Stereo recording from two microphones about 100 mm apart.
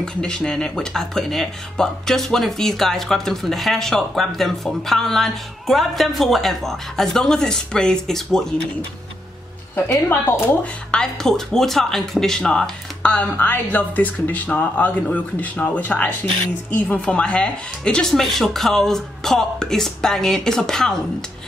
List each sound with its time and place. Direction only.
0.0 s speech: 5° left (ahead or behind)
9.8 s a woman's voice: 20° left (ahead or behind)
10.6 s speech: 5° left (ahead or behind)